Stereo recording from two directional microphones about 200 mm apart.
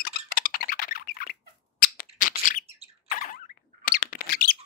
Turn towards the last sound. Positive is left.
turn(degrees=45)  # may be behind; listen again after turning